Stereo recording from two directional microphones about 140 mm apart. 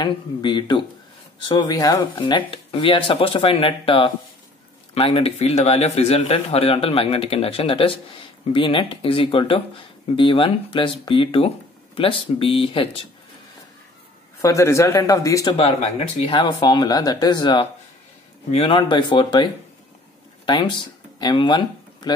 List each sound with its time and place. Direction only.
0.0 s a man's voice: 30° left (ahead or behind)
14.4 s a man's voice: 20° left (ahead or behind)
18.5 s speech: 45° left (ahead or behind)